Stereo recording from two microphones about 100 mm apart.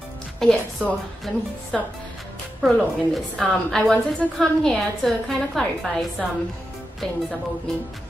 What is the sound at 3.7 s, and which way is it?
A woman's voice, 5° left (ahead or behind).